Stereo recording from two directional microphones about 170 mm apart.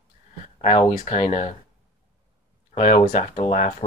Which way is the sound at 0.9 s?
40° left (ahead or behind).